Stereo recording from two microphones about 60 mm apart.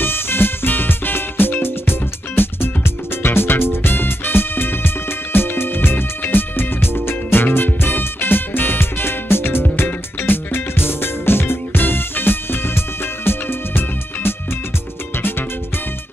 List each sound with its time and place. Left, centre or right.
0.0 s music: left